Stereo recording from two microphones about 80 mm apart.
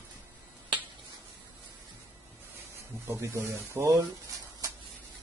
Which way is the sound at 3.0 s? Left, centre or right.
Right.